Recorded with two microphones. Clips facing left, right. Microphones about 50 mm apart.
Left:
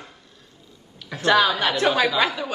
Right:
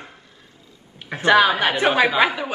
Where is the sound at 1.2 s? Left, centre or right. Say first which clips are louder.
Right 3 dB; right.